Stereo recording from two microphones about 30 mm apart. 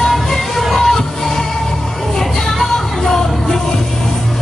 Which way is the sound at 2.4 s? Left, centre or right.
Centre.